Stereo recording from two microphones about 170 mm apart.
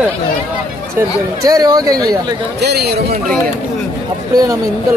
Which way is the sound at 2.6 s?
70° right (ahead or behind).